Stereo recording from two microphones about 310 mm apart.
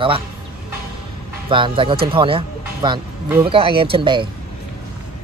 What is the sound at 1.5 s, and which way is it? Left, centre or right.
Speech, centre.